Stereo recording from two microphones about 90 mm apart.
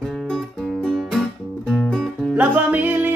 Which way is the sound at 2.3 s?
20° right (ahead or behind).